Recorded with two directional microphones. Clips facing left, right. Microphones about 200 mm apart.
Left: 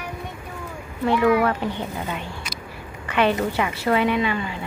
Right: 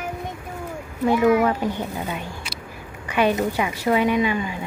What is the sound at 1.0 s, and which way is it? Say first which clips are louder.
A woman's voice: right 1 dB; 10° right (ahead or behind).